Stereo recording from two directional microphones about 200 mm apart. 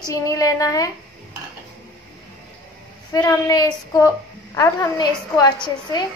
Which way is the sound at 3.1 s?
20° left (ahead or behind).